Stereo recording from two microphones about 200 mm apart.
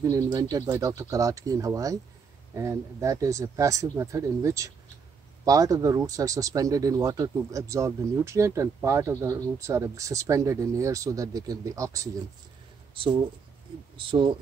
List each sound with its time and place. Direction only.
0.0 s speech: 15° right (ahead or behind)
13.9 s speech: 25° right (ahead or behind)